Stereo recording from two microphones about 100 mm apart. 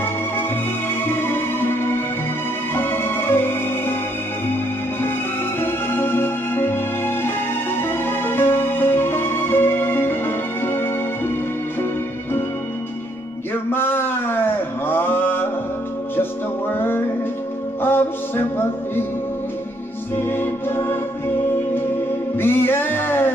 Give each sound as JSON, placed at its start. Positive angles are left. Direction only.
{"t": 1.0, "sound": "music", "side_deg": 20}
{"t": 5.6, "sound": "music", "side_deg": 20}
{"t": 13.7, "sound": "a sound", "side_deg": 20}
{"t": 16.2, "sound": "music", "side_deg": 20}
{"t": 20.2, "sound": "music", "side_deg": 20}
{"t": 22.4, "sound": "music", "side_deg": 20}